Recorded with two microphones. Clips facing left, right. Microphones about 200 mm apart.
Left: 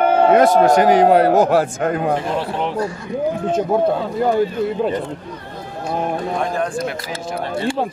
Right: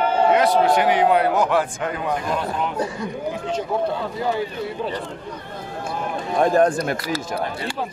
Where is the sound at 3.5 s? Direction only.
50° left (ahead or behind).